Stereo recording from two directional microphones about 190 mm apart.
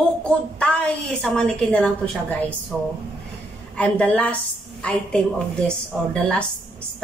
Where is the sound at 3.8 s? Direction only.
5° left (ahead or behind).